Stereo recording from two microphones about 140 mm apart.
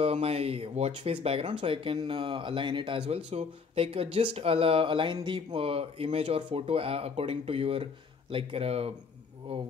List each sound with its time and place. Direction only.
0.0 s speech: 45° right (ahead or behind)
3.3 s speech: 45° right (ahead or behind)